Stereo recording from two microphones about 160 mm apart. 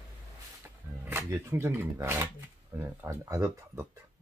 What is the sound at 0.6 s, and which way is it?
Speech, 15° right (ahead or behind).